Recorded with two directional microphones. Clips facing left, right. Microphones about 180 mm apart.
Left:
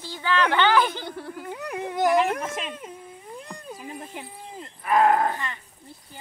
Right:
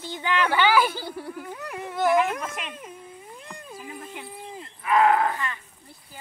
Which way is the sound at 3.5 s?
40° left (ahead or behind).